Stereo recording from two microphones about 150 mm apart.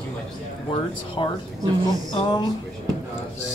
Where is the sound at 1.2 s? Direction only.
30° left (ahead or behind).